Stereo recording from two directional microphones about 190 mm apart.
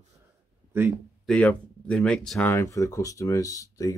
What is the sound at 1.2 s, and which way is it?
Speech, 5° left (ahead or behind).